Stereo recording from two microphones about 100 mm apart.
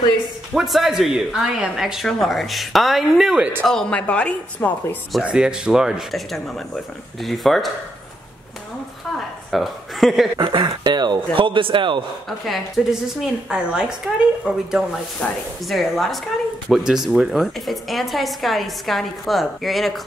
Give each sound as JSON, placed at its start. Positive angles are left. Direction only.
{"t": 0.6, "sound": "speech", "side_deg": 0}
{"t": 3.6, "sound": "speech", "side_deg": 10}
{"t": 5.2, "sound": "speech", "side_deg": -10}
{"t": 9.5, "sound": "speech", "side_deg": 0}
{"t": 10.3, "sound": "speech", "side_deg": -50}
{"t": 12.3, "sound": "speech", "side_deg": 0}